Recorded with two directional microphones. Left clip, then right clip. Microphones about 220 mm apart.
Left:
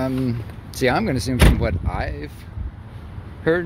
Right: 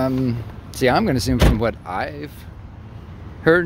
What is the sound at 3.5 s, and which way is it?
Speech, 20° right (ahead or behind).